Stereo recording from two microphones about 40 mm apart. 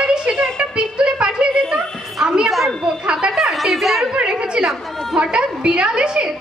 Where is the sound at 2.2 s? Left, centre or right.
Centre.